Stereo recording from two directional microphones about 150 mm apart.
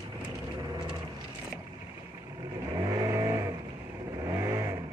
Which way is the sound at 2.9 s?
25° right (ahead or behind).